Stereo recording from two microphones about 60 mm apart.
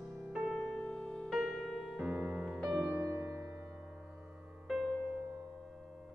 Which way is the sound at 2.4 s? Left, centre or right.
Centre.